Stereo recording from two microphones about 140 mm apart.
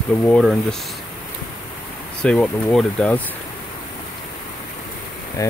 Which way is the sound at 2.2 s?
5° left (ahead or behind).